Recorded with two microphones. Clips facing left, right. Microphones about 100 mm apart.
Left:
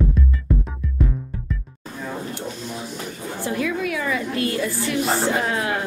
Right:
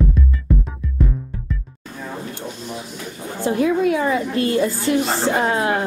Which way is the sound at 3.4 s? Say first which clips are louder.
Right 7 dB; 25° right (ahead or behind).